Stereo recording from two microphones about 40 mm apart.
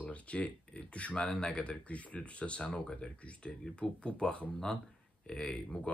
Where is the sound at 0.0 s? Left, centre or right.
Left.